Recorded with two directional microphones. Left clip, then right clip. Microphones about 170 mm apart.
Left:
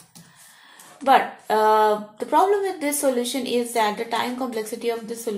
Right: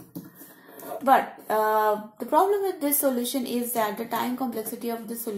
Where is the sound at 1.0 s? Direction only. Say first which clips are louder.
Left 3 dB; 40° right (ahead or behind).